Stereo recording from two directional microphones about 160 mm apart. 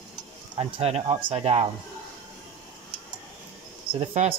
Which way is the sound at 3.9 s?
40° right (ahead or behind).